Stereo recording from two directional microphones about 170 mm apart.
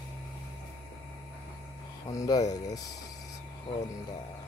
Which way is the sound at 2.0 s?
20° left (ahead or behind).